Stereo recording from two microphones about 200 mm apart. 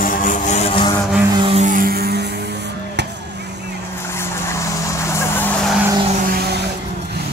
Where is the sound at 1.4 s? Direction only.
30° right (ahead or behind); by 2.2 s 50° right (ahead or behind).